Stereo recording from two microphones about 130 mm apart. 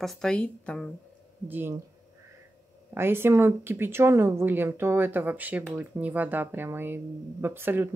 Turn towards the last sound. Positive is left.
turn(degrees=-15)  # may be behind; listen again after turning